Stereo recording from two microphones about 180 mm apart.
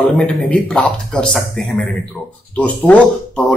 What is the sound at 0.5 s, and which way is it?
Speech, 5° left (ahead or behind).